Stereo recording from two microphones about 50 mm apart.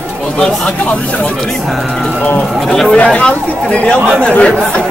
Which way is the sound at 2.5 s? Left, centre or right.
Centre.